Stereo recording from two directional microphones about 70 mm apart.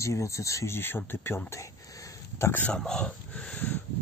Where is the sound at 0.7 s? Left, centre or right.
Left.